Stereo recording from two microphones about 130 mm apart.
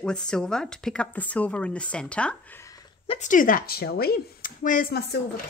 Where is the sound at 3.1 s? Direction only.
85° left.